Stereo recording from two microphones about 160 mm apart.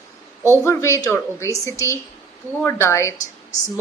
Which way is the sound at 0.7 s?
20° left (ahead or behind).